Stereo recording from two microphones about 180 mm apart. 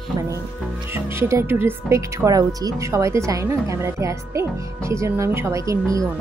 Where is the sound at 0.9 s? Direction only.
15° right (ahead or behind).